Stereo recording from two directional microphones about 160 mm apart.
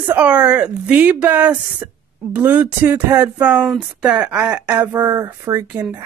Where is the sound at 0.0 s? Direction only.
10° right (ahead or behind).